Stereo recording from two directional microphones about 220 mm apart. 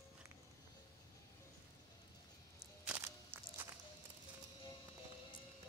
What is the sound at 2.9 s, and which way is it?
Music, 10° right (ahead or behind).